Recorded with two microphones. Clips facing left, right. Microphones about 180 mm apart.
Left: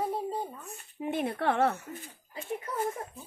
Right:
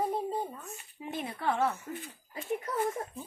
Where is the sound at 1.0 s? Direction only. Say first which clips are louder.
Left 7 dB; 60° left (ahead or behind).